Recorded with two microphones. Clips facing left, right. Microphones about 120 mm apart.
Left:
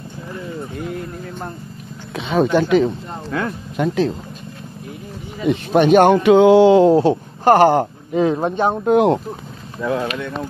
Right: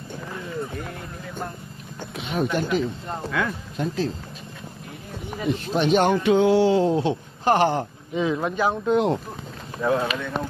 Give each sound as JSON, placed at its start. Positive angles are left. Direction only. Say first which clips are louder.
{"t": 2.1, "sound": "speech", "louder": "left 8 dB", "side_deg": 90}
{"t": 3.3, "sound": "speech", "louder": "left 3 dB", "side_deg": 30}
{"t": 3.7, "sound": "speech", "louder": "left 9 dB", "side_deg": 75}
{"t": 5.5, "sound": "speech", "louder": "left 8 dB", "side_deg": 60}
{"t": 6.1, "sound": "a sound", "louder": "left 8 dB", "side_deg": 90}
{"t": 6.9, "sound": "speech", "louder": "left 9 dB", "side_deg": 35}
{"t": 7.4, "sound": "speech", "louder": "left 8 dB", "side_deg": 55}
{"t": 8.8, "sound": "speech", "louder": "left 8 dB", "side_deg": 60}